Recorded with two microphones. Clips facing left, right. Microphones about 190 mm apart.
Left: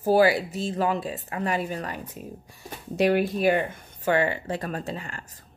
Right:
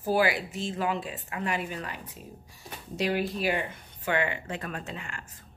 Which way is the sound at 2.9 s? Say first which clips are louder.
Left 7 dB; 60° left (ahead or behind).